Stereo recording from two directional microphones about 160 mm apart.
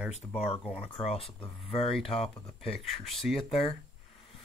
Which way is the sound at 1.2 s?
40° left (ahead or behind).